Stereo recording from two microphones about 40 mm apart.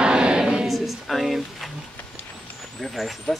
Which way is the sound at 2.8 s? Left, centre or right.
Centre.